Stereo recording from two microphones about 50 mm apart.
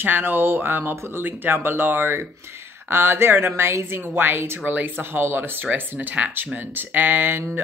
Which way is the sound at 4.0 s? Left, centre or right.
Right.